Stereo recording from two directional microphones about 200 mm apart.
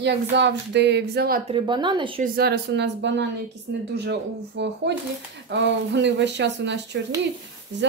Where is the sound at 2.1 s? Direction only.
50° right (ahead or behind).